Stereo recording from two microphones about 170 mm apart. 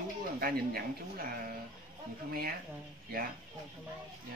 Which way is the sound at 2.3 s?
60° right (ahead or behind).